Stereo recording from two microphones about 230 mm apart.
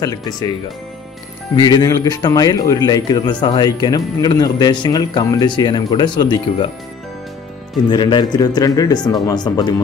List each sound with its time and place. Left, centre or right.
0.0 s a man's voice: centre
7.9 s a man's voice: centre